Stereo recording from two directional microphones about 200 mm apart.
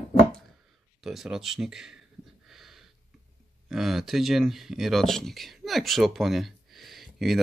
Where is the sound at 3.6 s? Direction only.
Centre (ahead or behind).